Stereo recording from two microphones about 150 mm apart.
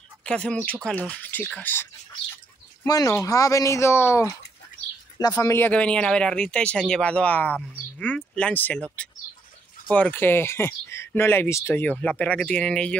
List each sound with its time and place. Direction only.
0.2 s speech: 5° left (ahead or behind)